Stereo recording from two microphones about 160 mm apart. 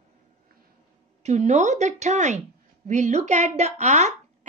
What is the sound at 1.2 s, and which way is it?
A woman's voice, 45° right (ahead or behind).